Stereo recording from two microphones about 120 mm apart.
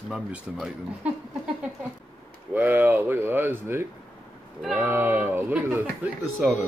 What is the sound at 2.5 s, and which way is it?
Speech, 15° right (ahead or behind).